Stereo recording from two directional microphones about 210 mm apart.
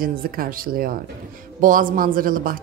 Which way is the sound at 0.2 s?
45° right (ahead or behind).